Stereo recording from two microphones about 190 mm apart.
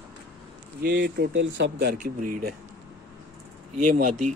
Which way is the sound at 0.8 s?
65° right (ahead or behind).